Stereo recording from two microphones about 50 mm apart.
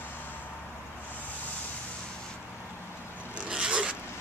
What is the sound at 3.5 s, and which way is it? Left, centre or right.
Zipper, centre.